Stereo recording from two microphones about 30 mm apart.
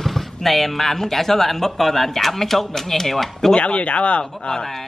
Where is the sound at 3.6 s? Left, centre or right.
Left.